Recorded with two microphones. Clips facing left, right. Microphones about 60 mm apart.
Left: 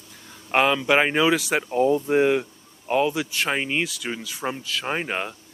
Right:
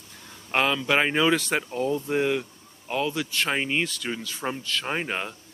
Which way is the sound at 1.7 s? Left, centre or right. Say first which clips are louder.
Left 6 dB; left.